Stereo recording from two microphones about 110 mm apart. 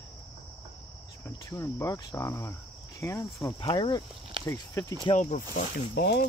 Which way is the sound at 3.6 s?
45° left (ahead or behind).